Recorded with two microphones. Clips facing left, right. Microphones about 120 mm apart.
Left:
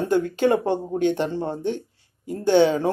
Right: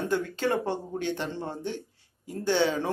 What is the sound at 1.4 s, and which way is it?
Speech, 50° left (ahead or behind).